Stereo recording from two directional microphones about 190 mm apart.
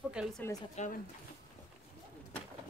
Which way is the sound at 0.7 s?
40° left (ahead or behind).